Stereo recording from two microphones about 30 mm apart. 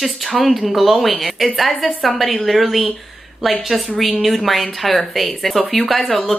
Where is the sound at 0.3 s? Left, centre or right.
Centre.